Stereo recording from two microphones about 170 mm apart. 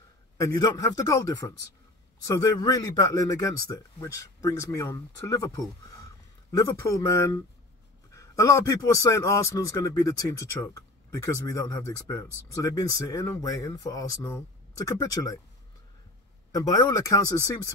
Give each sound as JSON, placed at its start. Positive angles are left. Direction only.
{"t": 0.6, "sound": "a man's voice", "side_deg": 20}
{"t": 16.5, "sound": "a man's voice", "side_deg": 20}